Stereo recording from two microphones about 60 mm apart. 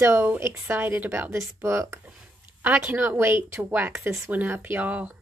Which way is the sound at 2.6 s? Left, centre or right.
Right.